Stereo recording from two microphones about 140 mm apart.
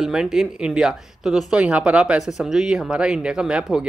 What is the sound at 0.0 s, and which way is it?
Speech, 5° right (ahead or behind).